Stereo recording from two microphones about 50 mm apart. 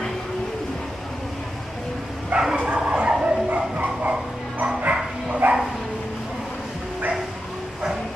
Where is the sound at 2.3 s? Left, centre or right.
Right.